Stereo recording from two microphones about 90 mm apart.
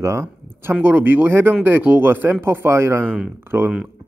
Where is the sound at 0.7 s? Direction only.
20° right (ahead or behind).